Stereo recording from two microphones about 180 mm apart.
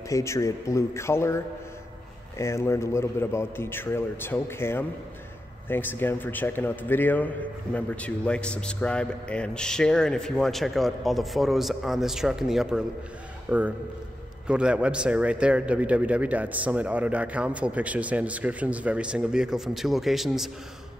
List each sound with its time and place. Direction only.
0.1 s a man's voice: 15° left (ahead or behind); by 20.5 s centre (ahead or behind)